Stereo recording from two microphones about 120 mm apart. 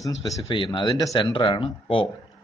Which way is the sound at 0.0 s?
30° left (ahead or behind).